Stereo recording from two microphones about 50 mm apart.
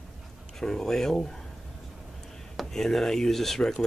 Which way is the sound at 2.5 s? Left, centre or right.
Centre.